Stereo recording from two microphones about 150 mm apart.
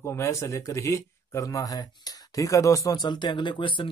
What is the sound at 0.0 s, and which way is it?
Speech, 20° left (ahead or behind).